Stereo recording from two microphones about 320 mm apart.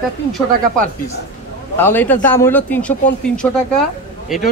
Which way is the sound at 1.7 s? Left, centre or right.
Centre.